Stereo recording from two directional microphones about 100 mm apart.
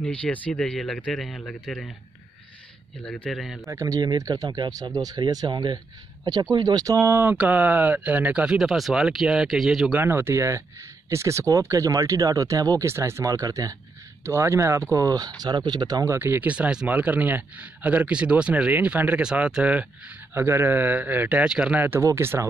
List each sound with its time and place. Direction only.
0.0 s speech: 10° left (ahead or behind)
3.0 s a man's voice: 5° left (ahead or behind)
3.6 s speech: 35° right (ahead or behind)
7.0 s speech: 20° right (ahead or behind); by 9.9 s 5° right (ahead or behind)
9.9 s speech: 25° right (ahead or behind); by 16.2 s 40° right (ahead or behind)
16.2 s speech: 20° right (ahead or behind)